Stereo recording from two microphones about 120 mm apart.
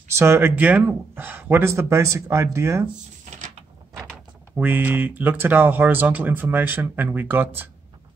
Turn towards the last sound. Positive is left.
turn(degrees=-15)  # may be behind; listen again after turning